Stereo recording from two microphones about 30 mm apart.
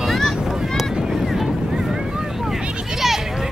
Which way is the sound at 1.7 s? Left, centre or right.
Centre.